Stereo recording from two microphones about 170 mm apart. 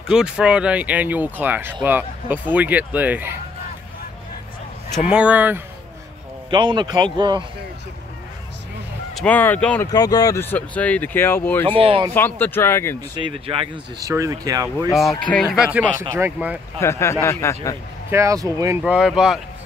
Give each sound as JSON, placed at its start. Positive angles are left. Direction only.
{"t": 0.1, "sound": "speech", "side_deg": -5}
{"t": 5.1, "sound": "speech", "side_deg": -10}
{"t": 6.5, "sound": "speech", "side_deg": -25}
{"t": 9.1, "sound": "speech", "side_deg": 10}
{"t": 9.8, "sound": "speech", "side_deg": 20}
{"t": 11.8, "sound": "speech", "side_deg": -30}
{"t": 12.1, "sound": "speech", "side_deg": 10}
{"t": 13.1, "sound": "speech", "side_deg": -30}
{"t": 14.0, "sound": "speech", "side_deg": -20}
{"t": 14.9, "sound": "speech", "side_deg": 0}
{"t": 16.8, "sound": "speech", "side_deg": 15}
{"t": 18.1, "sound": "speech", "side_deg": -20}
{"t": 18.8, "sound": "speech", "side_deg": -5}